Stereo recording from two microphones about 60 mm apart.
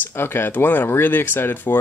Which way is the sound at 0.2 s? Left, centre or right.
Left.